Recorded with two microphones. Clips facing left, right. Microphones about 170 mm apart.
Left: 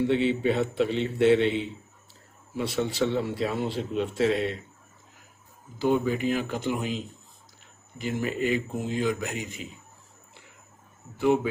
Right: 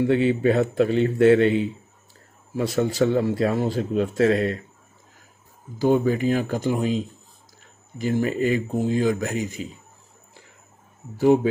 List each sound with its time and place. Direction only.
0.1 s speech: 45° right (ahead or behind)
5.8 s speech: 40° right (ahead or behind)